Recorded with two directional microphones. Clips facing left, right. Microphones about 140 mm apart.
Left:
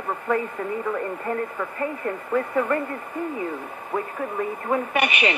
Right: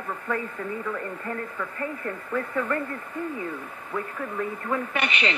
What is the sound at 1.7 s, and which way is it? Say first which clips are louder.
Speech: left 5 dB; 25° left (ahead or behind).